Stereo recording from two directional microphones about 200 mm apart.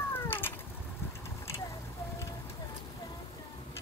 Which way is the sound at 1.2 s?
15° left (ahead or behind).